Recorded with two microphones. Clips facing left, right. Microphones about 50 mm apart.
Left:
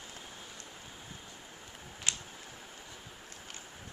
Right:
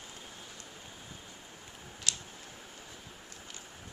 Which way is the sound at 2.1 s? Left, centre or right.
Left.